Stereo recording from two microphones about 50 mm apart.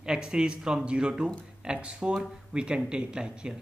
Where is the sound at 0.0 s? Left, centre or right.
Centre.